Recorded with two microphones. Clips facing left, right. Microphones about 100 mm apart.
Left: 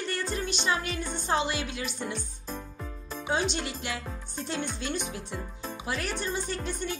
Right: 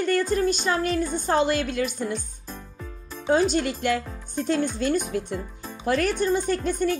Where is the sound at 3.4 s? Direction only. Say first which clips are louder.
Right 9 dB; 45° right (ahead or behind).